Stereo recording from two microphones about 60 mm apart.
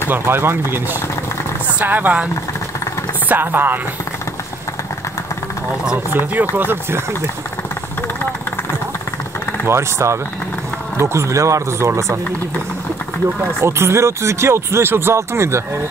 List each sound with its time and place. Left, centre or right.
0.1 s speech: right
1.8 s speech: right
3.3 s speech: right
6.5 s speech: right
9.7 s speech: right
13.6 s speech: right